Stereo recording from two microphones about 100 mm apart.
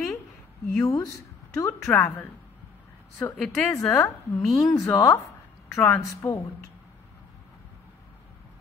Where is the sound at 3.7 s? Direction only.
30° left (ahead or behind).